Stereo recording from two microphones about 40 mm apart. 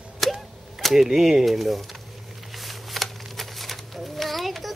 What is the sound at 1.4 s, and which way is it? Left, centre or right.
Speech, centre.